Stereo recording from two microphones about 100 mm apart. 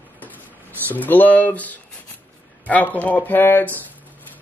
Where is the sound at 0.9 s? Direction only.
15° left (ahead or behind).